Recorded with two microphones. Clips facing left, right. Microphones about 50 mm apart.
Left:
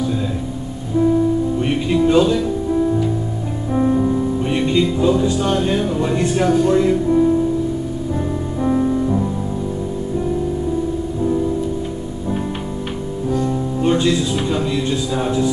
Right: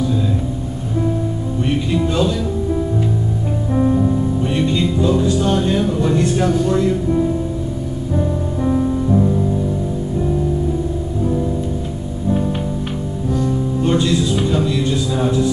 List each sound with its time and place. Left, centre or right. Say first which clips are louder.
1.6 s music: left 2 dB; centre
3.7 s music: even; centre
5.2 s music: right 1 dB; left
6.5 s speech: left 2 dB; centre
8.6 s music: left 1 dB; centre
13.5 s music: even; centre
13.9 s music: right 1 dB; left